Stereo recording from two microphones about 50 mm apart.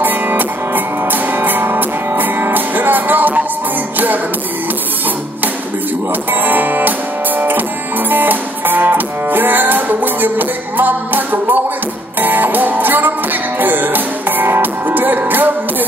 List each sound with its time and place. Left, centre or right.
0.0 s music: right
6.3 s music: right